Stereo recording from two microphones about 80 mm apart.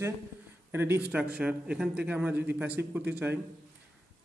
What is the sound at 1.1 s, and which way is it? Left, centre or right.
A man's voice, centre.